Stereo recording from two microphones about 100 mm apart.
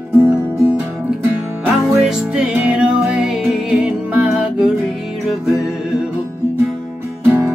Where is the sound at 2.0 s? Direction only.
10° right (ahead or behind).